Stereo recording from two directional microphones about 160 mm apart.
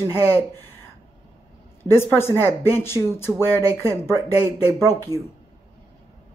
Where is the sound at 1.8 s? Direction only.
15° left (ahead or behind).